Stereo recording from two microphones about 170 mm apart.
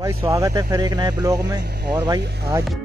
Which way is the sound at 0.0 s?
20° right (ahead or behind).